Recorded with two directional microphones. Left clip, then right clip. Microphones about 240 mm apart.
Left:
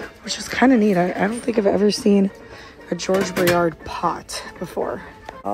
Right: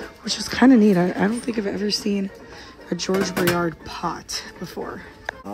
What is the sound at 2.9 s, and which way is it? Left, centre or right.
Speech, centre.